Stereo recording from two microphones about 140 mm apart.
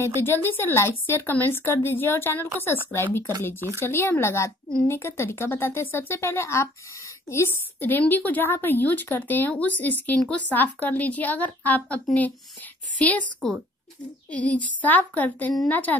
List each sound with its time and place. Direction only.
0.0 s a woman's voice: 15° left (ahead or behind)
13.4 s a woman's voice: centre (ahead or behind)